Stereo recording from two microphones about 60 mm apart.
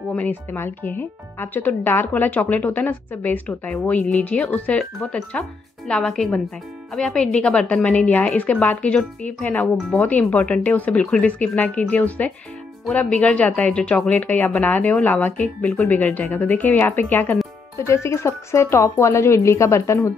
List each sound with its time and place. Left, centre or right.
0.1 s speech: left; by 7.6 s centre
7.6 s speech: left
17.8 s a woman's voice: left